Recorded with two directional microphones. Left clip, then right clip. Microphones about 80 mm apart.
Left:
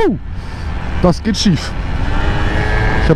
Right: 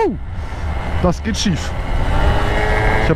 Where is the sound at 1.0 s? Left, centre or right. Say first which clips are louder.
Left 5 dB; left.